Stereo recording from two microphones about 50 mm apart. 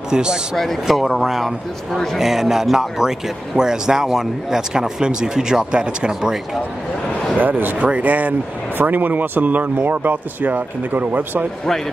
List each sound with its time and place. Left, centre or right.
0.1 s speech: centre
0.6 s speech: centre
7.3 s speech: right